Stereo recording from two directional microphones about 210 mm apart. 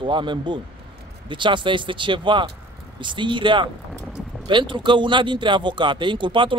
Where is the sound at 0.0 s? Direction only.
20° right (ahead or behind).